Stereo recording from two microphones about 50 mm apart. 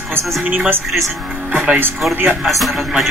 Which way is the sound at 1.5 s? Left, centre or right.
Right.